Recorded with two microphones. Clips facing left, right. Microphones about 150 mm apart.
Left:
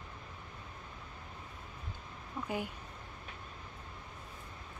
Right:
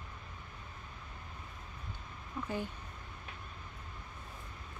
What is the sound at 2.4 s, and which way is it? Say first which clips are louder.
Speech: left 1 dB; 15° left (ahead or behind).